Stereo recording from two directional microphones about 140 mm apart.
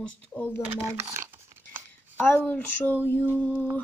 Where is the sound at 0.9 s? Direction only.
20° right (ahead or behind).